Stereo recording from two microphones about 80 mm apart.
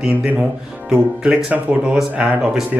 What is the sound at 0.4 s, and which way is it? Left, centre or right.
Speech, centre.